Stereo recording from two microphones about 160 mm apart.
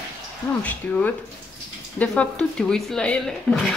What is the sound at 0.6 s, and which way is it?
Speech, 10° left (ahead or behind).